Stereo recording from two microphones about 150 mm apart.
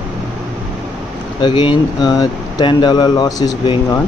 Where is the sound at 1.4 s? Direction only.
30° left (ahead or behind).